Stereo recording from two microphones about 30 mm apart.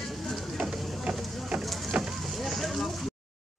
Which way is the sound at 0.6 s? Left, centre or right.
Right.